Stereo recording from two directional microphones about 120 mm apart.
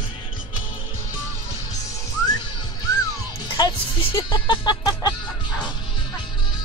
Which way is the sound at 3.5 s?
40° left (ahead or behind).